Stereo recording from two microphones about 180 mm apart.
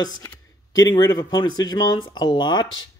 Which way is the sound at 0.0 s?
20° left (ahead or behind).